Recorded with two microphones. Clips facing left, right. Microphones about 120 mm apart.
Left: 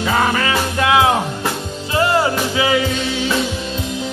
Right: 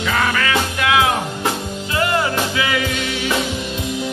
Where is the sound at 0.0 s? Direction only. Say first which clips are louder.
Left 2 dB; 25° left (ahead or behind).